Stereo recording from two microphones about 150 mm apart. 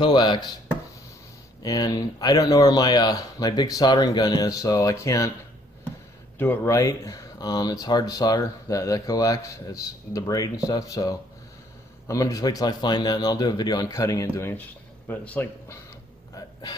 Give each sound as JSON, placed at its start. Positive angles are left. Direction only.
{"t": 0.0, "sound": "speech", "side_deg": 30}
{"t": 1.6, "sound": "speech", "side_deg": 25}
{"t": 6.3, "sound": "speech", "side_deg": 15}